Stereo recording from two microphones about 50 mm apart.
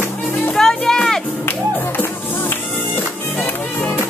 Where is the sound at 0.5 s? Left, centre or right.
Centre.